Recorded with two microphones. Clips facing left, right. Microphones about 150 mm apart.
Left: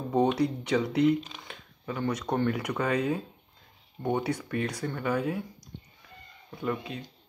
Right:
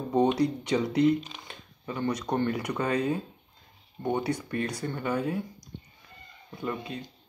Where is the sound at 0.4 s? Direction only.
5° left (ahead or behind).